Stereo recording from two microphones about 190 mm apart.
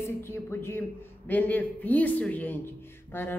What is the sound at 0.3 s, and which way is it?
A man's voice, 10° left (ahead or behind).